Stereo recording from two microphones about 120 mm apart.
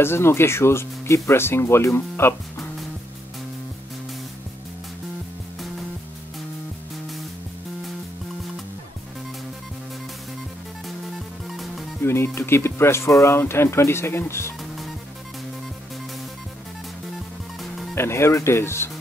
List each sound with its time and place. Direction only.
0.0 s speech: 20° left (ahead or behind)
11.1 s music: centre (ahead or behind)
12.0 s speech: 20° left (ahead or behind)
17.9 s speech: 20° left (ahead or behind)